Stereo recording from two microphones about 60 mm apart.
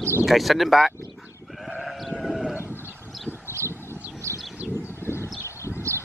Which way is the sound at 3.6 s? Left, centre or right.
Right.